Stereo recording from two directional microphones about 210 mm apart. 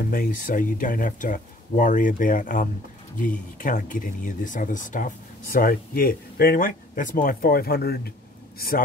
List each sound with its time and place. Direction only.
0.1 s speech: 40° left (ahead or behind)